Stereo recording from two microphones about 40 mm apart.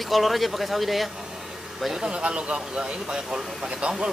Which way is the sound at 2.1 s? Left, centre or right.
Right.